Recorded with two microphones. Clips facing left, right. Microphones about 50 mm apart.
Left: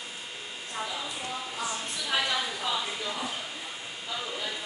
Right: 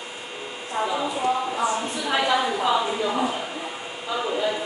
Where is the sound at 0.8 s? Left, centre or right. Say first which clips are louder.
Right 11 dB; right.